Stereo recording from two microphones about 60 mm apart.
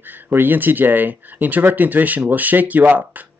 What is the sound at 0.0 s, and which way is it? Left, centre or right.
Speech, right.